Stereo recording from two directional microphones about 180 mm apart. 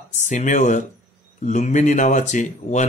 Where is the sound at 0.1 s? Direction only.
40° left (ahead or behind).